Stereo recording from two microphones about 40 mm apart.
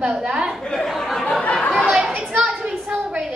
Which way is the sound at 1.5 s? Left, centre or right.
Centre.